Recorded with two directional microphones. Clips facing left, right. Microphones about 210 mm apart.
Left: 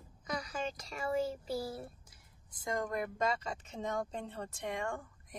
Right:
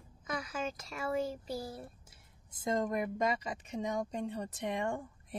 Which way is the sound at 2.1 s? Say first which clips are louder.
Right 1 dB; 25° right (ahead or behind).